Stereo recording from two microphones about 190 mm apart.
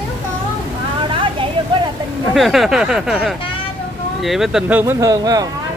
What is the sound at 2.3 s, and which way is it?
Speech, centre (ahead or behind).